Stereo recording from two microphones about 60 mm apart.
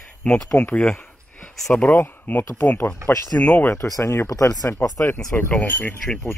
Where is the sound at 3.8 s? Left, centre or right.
Left.